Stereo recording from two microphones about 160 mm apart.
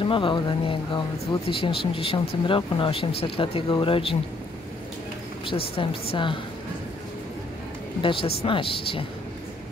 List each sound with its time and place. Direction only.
0.0 s speech: 30° left (ahead or behind)
5.4 s speech: 35° left (ahead or behind)
8.0 s speech: 30° left (ahead or behind)